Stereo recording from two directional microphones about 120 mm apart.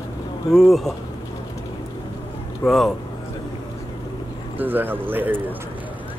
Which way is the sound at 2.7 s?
Centre (ahead or behind).